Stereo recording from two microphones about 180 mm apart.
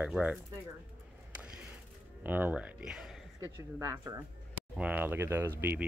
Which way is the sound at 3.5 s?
15° right (ahead or behind).